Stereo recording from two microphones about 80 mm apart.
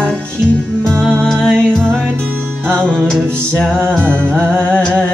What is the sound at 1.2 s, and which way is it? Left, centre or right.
Music, centre.